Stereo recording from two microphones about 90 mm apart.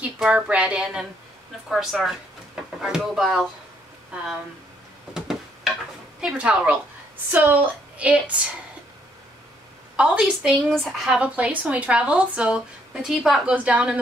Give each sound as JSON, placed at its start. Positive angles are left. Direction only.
{"t": 0.0, "sound": "speech", "side_deg": -15}
{"t": 1.7, "sound": "speech", "side_deg": 0}
{"t": 5.1, "sound": "tick-tock", "side_deg": -5}
{"t": 6.2, "sound": "speech", "side_deg": -10}
{"t": 9.9, "sound": "speech", "side_deg": -10}
{"t": 11.2, "sound": "speech", "side_deg": -15}
{"t": 13.7, "sound": "speech", "side_deg": -15}